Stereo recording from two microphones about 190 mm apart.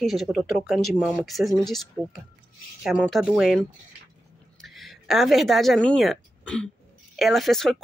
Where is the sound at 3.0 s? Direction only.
Centre (ahead or behind).